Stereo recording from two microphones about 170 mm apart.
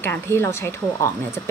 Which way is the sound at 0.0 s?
15° left (ahead or behind).